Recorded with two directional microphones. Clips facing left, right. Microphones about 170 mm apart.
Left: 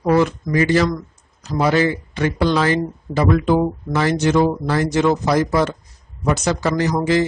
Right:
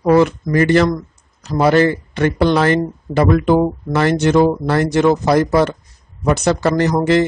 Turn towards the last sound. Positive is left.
turn(degrees=-60)  # may be behind; listen again after turning